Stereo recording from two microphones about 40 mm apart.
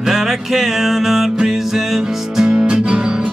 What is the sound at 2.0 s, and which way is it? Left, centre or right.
Music, centre.